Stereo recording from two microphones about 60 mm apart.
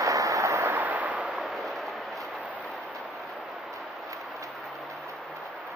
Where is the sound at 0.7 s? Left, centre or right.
Right.